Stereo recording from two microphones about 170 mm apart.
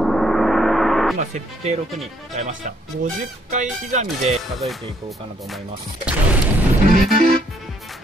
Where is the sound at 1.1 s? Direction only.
40° right (ahead or behind).